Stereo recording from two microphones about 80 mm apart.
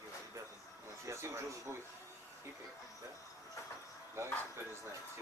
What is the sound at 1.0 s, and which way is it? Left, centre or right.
Speech, right.